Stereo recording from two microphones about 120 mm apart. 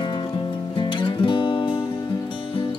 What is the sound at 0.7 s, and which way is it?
Music, 45° left (ahead or behind).